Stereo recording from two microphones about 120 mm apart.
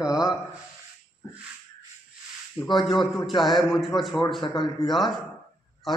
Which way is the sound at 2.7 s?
Centre (ahead or behind).